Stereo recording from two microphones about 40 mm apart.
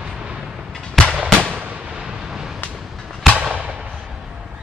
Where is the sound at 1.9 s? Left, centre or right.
Centre.